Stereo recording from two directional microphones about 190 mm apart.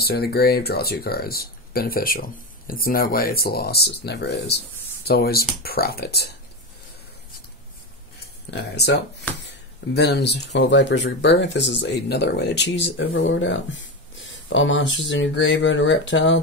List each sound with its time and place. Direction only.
0.0 s speech: 55° left (ahead or behind)
8.5 s speech: 60° left (ahead or behind)
12.9 s speech: 75° left (ahead or behind)